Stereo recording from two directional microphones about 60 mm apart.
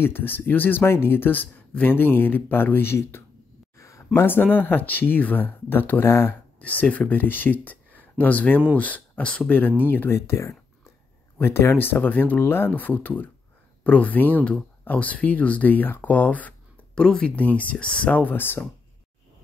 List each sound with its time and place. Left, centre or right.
0.0 s speech: left
3.7 s speech: left
6.6 s speech: left
17.4 s speech: left